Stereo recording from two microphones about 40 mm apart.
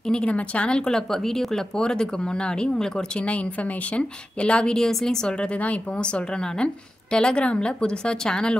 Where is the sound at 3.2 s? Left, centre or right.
Left.